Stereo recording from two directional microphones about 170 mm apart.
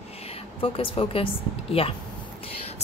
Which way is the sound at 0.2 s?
35° left (ahead or behind).